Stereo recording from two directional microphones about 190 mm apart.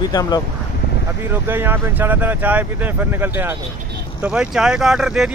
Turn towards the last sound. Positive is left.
turn(degrees=0)  # may be behind; listen again after turning